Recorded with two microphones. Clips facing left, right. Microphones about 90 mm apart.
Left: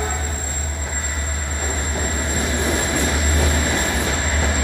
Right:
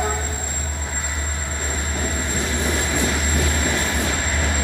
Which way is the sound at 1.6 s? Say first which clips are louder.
Left 2 dB; 15° left (ahead or behind).